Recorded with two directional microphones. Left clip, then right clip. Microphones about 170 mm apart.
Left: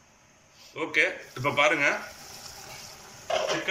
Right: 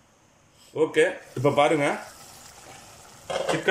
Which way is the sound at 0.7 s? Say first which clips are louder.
Right 4 dB; 40° right (ahead or behind).